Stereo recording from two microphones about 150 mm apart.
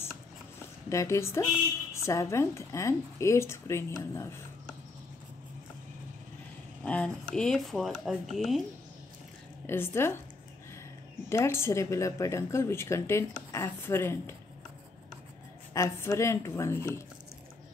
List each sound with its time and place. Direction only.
0.8 s speech: 20° left (ahead or behind)
6.8 s speech: 10° left (ahead or behind)
9.7 s speech: 15° left (ahead or behind)
11.2 s speech: 15° left (ahead or behind)
15.7 s speech: 20° left (ahead or behind)